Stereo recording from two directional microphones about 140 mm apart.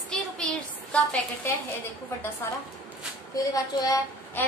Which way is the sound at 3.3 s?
25° left (ahead or behind).